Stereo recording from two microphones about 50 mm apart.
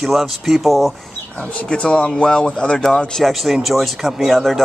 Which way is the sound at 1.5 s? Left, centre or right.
Left.